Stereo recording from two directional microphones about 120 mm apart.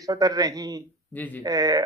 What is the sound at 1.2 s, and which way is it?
Speech, 15° left (ahead or behind).